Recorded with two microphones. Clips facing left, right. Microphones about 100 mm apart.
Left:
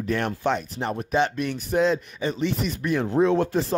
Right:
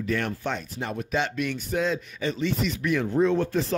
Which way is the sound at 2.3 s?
40° left (ahead or behind).